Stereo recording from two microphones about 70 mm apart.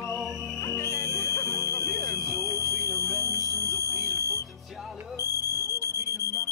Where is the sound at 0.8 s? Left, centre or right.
Left.